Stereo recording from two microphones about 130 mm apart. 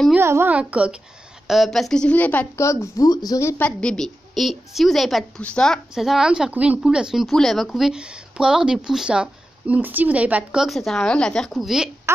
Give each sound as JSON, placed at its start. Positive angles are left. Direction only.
{"t": 0.2, "sound": "a woman's voice", "side_deg": -20}
{"t": 1.5, "sound": "a woman's voice", "side_deg": 0}
{"t": 3.6, "sound": "a woman's voice", "side_deg": 5}